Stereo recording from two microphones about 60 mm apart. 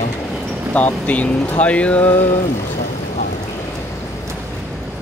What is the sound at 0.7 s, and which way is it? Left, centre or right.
Speech, left.